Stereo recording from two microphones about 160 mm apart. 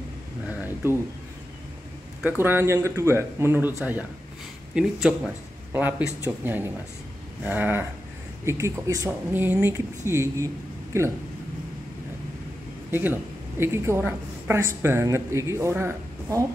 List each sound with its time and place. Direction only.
2.2 s a woman's voice: 15° right (ahead or behind)
4.7 s a woman's voice: 5° right (ahead or behind); by 11.1 s 20° right (ahead or behind)
12.9 s a woman's voice: 15° right (ahead or behind)